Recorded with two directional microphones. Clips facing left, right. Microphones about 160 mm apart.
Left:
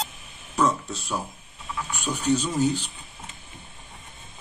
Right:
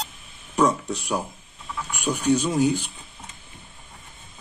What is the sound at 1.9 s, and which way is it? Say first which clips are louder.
Speech: right 3 dB; 10° right (ahead or behind).